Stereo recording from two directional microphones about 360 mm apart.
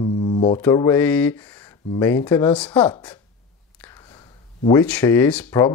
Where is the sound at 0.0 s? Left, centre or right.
Centre.